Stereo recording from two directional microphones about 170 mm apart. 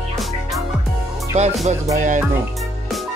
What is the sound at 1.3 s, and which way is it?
Music, 40° right (ahead or behind).